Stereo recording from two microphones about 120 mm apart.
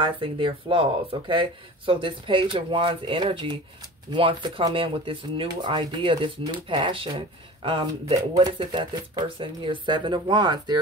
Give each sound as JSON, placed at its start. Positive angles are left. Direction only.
{"t": 0.0, "sound": "speech", "side_deg": -45}
{"t": 8.2, "sound": "speech", "side_deg": -40}